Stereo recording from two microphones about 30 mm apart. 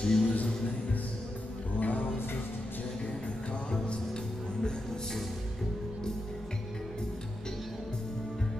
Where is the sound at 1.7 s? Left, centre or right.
Left.